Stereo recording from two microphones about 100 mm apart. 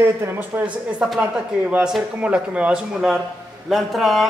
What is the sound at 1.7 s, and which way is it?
A man's voice, 5° right (ahead or behind).